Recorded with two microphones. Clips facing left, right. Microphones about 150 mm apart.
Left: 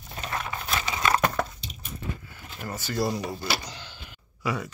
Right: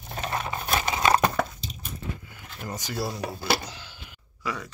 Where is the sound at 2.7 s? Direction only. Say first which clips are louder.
Left 1 dB; 15° right (ahead or behind).